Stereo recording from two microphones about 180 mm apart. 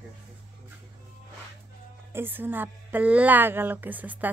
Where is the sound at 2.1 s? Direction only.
10° right (ahead or behind).